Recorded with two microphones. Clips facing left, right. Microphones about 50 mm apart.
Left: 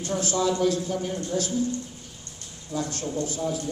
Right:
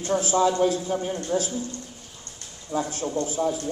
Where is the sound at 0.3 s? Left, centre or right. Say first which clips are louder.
Right 2 dB; right.